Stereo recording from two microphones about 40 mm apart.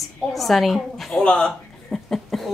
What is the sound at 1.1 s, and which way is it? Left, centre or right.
Speech, left.